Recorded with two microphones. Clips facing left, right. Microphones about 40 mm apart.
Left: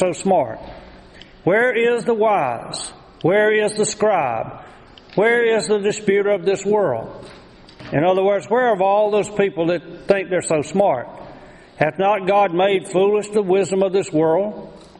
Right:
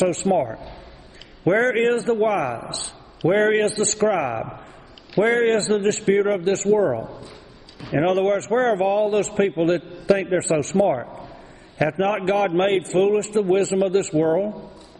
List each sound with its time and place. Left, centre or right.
0.0 s a man's voice: centre
7.9 s a man's voice: centre